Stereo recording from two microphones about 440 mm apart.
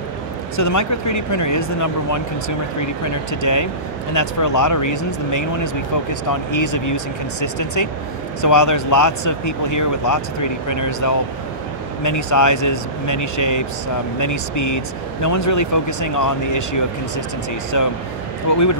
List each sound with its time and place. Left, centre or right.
0.6 s speech: left
17.7 s speech: left